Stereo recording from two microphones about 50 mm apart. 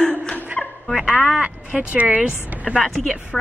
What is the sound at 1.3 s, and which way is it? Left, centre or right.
Speech, right.